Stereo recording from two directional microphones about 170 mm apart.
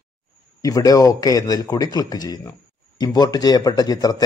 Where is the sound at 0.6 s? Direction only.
20° left (ahead or behind).